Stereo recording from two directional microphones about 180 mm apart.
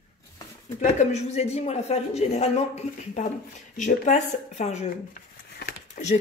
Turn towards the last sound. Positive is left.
turn(degrees=50)  # may be behind; listen again after turning